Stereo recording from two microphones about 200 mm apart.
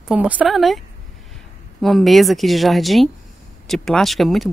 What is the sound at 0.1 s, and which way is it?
Speech, 5° right (ahead or behind).